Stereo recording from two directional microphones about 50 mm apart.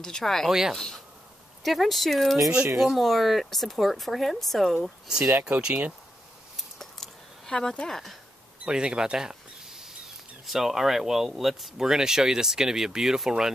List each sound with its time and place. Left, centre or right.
0.0 s speech: centre
0.5 s speech: centre
0.7 s speech: centre
5.6 s speech: right
6.8 s a sound: centre
8.6 s a sound: centre
10.4 s speech: centre